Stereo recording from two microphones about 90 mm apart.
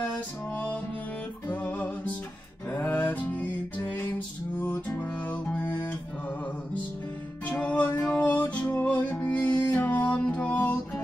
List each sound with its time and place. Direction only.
1.5 s music: 15° left (ahead or behind)
7.4 s music: 15° left (ahead or behind)